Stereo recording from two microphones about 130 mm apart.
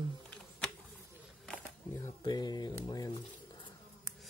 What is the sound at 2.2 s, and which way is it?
Speech, 30° left (ahead or behind).